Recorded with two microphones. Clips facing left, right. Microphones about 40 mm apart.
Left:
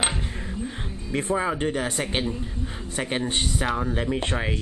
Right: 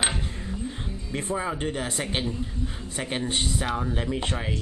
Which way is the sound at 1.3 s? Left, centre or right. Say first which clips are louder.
Left 3 dB; left.